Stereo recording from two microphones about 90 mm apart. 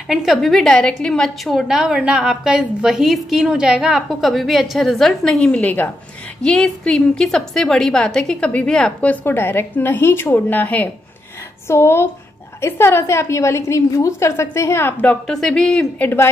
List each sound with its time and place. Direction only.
0.1 s a woman's voice: 5° right (ahead or behind); by 10.9 s 20° left (ahead or behind)
11.6 s a woman's voice: 30° left (ahead or behind)
15.2 s a woman's voice: 5° left (ahead or behind)
16.0 s speech: 25° left (ahead or behind)